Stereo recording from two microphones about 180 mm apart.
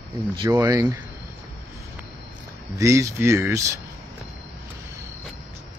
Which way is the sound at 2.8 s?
15° right (ahead or behind).